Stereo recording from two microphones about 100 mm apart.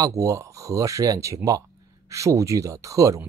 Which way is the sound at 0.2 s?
30° right (ahead or behind).